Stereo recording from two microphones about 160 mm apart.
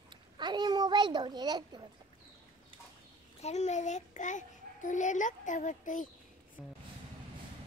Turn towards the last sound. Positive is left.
turn(degrees=50)  # may be behind; listen again after turning